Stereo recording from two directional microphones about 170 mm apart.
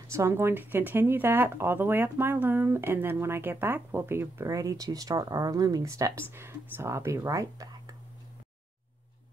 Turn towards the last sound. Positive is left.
turn(degrees=-20)  # may be behind; listen again after turning